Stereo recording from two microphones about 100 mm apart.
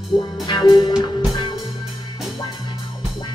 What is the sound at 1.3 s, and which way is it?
Music, 55° left (ahead or behind).